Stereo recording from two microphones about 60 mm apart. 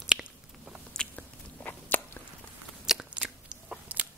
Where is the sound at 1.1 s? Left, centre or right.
Left.